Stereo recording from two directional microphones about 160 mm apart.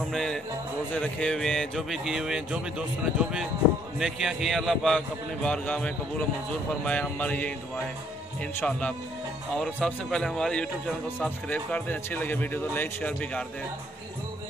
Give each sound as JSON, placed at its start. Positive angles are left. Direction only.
{"t": 0.1, "sound": "a man's voice", "side_deg": 5}